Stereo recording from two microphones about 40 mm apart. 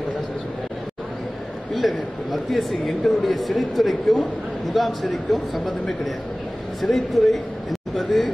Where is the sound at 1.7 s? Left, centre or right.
Centre.